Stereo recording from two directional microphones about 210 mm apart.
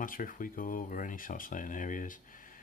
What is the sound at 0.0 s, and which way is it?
Speech, 40° left (ahead or behind).